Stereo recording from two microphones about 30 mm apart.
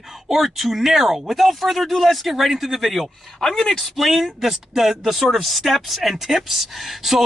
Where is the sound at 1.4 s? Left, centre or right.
Centre.